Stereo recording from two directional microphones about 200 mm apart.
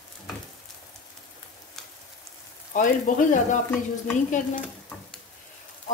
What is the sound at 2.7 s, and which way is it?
Speech, 40° left (ahead or behind).